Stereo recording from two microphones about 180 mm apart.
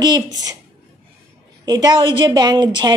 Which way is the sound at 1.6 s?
20° right (ahead or behind).